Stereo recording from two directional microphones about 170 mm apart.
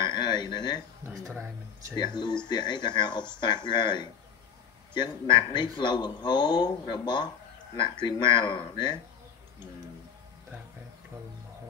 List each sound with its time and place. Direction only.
0.0 s a sound: 25° left (ahead or behind)
1.3 s speech: 15° right (ahead or behind)
2.0 s speech: 25° left (ahead or behind)